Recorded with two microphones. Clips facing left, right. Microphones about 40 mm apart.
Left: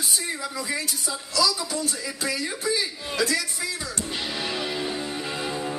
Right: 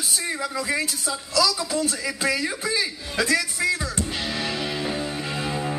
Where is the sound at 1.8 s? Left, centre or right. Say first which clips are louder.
Right 4 dB; centre.